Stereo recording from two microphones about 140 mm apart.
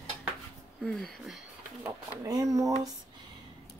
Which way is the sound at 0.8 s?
Centre (ahead or behind).